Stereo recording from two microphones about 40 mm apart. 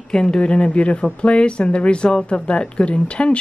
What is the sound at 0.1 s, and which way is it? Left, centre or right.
Speech, centre.